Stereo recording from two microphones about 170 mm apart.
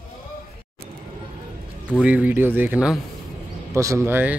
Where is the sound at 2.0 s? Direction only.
10° right (ahead or behind).